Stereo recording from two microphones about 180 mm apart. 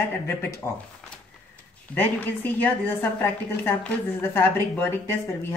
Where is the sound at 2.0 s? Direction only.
10° left (ahead or behind).